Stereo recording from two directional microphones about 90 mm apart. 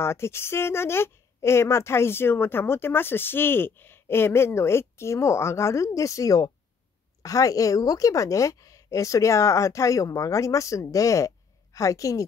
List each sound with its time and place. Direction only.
0.0 s a woman's voice: 30° left (ahead or behind)